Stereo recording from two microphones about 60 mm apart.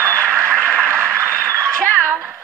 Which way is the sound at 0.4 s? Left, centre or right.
Centre.